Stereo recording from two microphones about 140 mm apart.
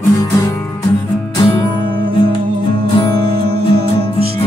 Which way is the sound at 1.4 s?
35° left (ahead or behind).